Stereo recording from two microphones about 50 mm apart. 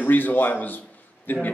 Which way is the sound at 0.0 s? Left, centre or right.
Left.